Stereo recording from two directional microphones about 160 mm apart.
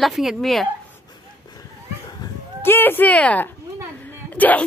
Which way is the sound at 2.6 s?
15° left (ahead or behind).